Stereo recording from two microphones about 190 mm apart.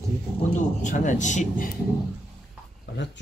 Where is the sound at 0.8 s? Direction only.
40° left (ahead or behind).